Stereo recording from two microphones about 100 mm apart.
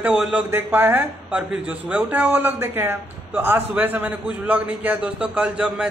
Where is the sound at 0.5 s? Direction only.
20° right (ahead or behind).